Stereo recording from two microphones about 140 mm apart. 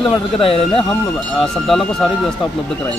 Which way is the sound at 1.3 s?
5° left (ahead or behind).